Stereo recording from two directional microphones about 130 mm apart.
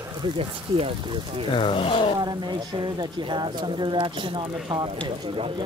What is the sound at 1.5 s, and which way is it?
Speech, 40° left (ahead or behind).